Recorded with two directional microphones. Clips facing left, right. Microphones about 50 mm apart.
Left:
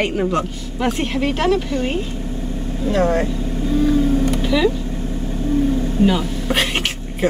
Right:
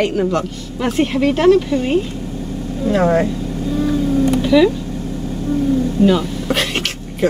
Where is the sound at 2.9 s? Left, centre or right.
Right.